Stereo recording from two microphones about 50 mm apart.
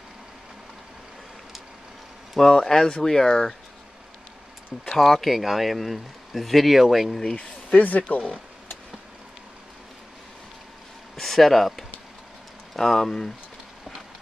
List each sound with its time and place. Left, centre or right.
2.3 s speech: centre
4.8 s speech: centre
7.3 s speech: left
11.1 s speech: centre